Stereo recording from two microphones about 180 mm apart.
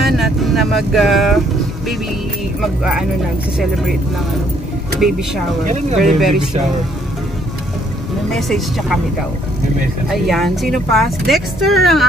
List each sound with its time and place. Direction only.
0.0 s vehicle: centre (ahead or behind)
2.6 s speech: 5° right (ahead or behind)
5.0 s speech: centre (ahead or behind)
8.3 s speech: centre (ahead or behind)
10.0 s speech: centre (ahead or behind)